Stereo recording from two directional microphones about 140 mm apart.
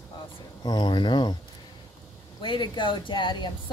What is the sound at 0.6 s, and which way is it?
Speech, 30° left (ahead or behind).